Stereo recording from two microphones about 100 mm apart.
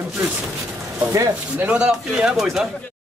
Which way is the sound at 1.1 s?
30° right (ahead or behind).